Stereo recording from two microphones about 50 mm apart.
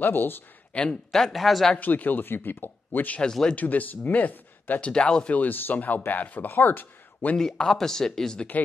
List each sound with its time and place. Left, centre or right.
0.0 s speech: left
0.7 s speech: left
1.1 s speech: centre
1.8 s speech: left
4.8 s speech: centre
5.3 s speech: left
7.3 s speech: centre